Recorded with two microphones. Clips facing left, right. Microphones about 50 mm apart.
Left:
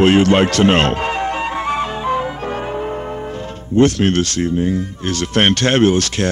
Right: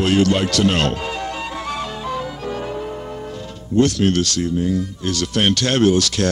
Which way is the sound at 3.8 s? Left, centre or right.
Left.